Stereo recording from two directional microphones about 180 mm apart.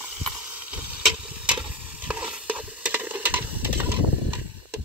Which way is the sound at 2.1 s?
5° right (ahead or behind).